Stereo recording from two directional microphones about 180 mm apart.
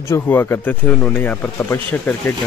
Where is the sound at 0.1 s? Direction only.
15° left (ahead or behind).